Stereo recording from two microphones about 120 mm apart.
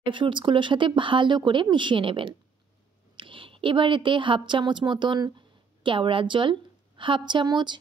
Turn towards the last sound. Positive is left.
turn(degrees=-40)  # may be behind; listen again after turning